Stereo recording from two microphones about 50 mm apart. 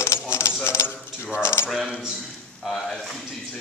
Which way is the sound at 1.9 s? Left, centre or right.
Centre.